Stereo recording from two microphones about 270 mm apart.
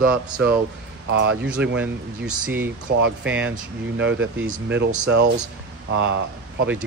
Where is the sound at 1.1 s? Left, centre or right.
Right.